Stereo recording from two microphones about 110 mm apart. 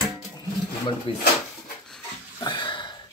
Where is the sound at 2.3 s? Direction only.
45° left (ahead or behind).